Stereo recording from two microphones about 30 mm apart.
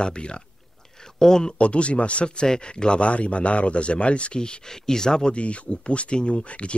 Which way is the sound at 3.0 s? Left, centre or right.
Left.